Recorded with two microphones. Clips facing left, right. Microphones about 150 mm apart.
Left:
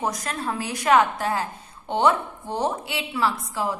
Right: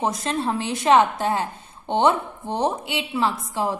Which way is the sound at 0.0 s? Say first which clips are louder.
Right 4 dB; 25° right (ahead or behind).